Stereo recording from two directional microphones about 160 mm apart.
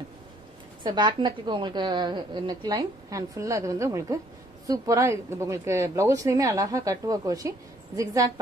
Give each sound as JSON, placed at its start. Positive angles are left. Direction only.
{"t": 0.8, "sound": "speech", "side_deg": -30}